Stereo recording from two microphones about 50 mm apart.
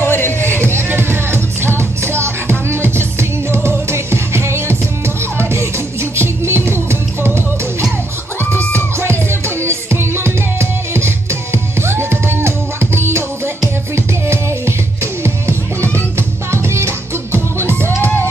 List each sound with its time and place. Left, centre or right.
0.0 s music: left
0.6 s music: right
9.7 s music: right